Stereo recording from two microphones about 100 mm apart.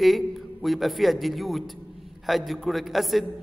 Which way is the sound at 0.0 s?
Centre (ahead or behind).